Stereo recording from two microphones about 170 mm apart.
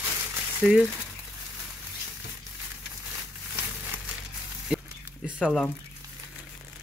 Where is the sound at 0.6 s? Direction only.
5° right (ahead or behind).